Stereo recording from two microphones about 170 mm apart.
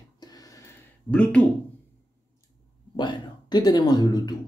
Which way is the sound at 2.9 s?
25° left (ahead or behind).